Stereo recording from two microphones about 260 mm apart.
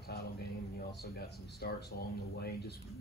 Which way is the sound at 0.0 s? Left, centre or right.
Left.